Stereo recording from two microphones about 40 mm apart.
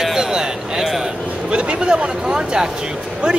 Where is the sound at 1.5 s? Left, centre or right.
Right.